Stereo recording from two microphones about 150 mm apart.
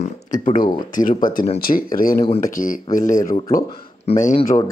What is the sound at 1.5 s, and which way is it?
Speech, 70° left (ahead or behind).